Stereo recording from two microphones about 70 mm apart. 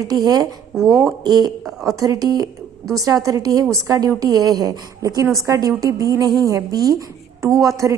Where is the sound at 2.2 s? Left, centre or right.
Right.